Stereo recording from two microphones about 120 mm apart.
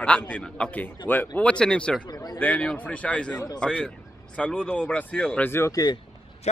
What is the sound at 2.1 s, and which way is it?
Speech, 35° left (ahead or behind).